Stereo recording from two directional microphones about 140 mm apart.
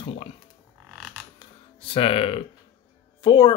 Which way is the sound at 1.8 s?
40° left (ahead or behind).